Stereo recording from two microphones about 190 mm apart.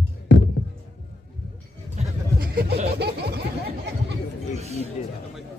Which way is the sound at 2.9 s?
60° right (ahead or behind).